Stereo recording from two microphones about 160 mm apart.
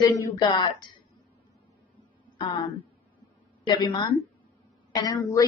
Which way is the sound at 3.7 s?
25° left (ahead or behind).